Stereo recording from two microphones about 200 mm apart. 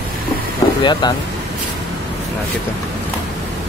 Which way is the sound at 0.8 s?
25° left (ahead or behind).